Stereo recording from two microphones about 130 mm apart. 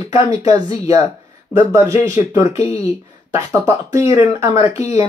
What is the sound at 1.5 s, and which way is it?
Speech, 20° right (ahead or behind).